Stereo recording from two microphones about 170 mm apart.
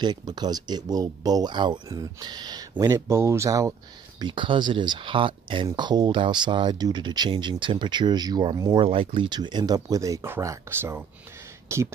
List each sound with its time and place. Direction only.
0.0 s speech: 25° right (ahead or behind)
4.2 s speech: 30° right (ahead or behind)